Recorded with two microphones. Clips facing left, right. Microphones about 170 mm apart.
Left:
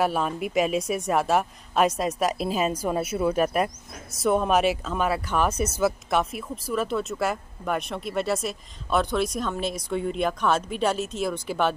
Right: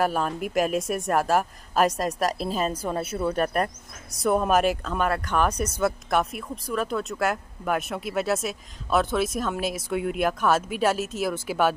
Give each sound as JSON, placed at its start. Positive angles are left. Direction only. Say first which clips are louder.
{"t": 0.0, "sound": "speech", "louder": "even", "side_deg": 0}